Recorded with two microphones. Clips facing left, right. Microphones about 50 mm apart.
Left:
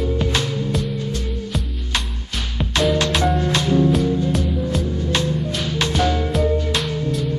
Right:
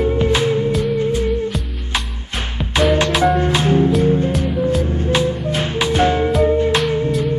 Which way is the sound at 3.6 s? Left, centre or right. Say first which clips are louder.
Even; right.